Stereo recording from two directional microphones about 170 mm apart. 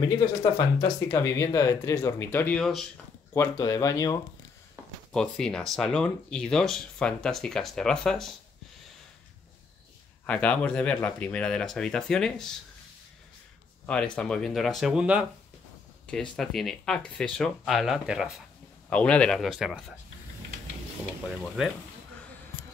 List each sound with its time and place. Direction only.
0.4 s speech: 20° left (ahead or behind); by 2.9 s 5° left (ahead or behind)
3.3 s speech: 20° left (ahead or behind)
5.1 s speech: 5° left (ahead or behind)
10.2 s speech: 10° left (ahead or behind)
13.8 s speech: 5° left (ahead or behind)
18.9 s speech: 5° left (ahead or behind)
21.6 s speech: 5° right (ahead or behind)